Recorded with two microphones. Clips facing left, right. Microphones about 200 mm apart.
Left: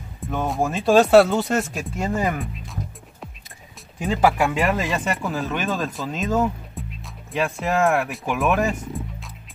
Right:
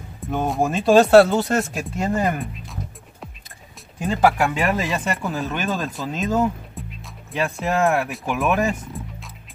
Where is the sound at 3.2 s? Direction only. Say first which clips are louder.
Even; centre (ahead or behind).